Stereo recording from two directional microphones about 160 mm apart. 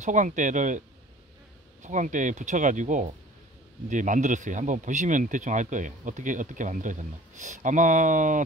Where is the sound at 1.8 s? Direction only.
50° right (ahead or behind).